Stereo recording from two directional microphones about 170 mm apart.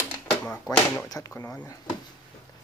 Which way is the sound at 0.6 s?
20° left (ahead or behind).